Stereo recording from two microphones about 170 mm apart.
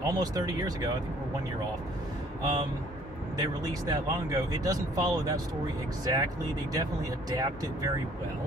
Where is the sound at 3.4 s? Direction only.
20° right (ahead or behind).